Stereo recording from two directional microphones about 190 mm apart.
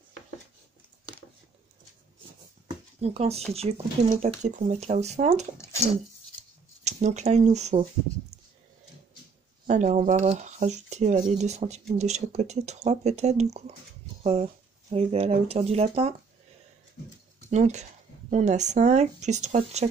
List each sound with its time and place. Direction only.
3.0 s speech: 35° right (ahead or behind)
6.8 s speech: 35° right (ahead or behind)
9.7 s speech: 40° right (ahead or behind)
17.5 s speech: 35° right (ahead or behind)